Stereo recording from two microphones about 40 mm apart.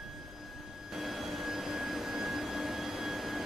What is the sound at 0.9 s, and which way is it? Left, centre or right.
Vacuum cleaner, centre.